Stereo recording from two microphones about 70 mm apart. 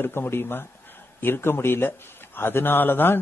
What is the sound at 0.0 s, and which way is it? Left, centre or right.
A man's voice, left.